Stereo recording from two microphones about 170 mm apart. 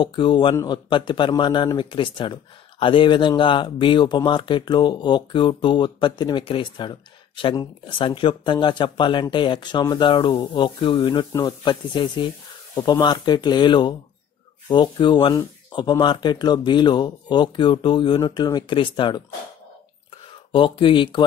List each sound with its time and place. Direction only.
0.0 s a man's voice: 30° left (ahead or behind)
20.5 s a man's voice: 30° left (ahead or behind)